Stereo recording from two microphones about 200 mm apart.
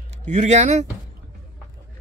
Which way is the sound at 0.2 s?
35° right (ahead or behind).